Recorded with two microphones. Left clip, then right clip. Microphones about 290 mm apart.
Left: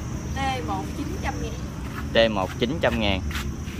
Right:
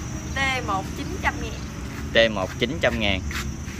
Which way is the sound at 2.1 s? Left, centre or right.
Centre.